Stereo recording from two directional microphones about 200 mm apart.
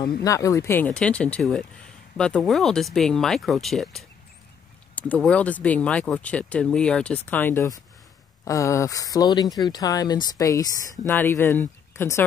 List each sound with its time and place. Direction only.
0.0 s speech: 15° left (ahead or behind)